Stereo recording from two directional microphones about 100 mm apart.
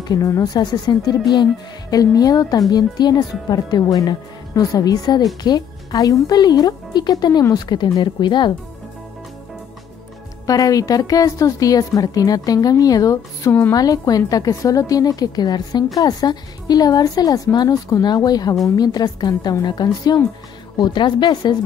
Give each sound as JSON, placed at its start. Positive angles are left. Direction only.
{"t": 0.1, "sound": "a woman's voice", "side_deg": 35}
{"t": 10.4, "sound": "a woman's voice", "side_deg": 35}
{"t": 13.7, "sound": "a woman's voice", "side_deg": 40}